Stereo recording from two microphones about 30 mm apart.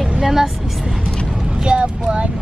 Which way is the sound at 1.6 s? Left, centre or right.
Right.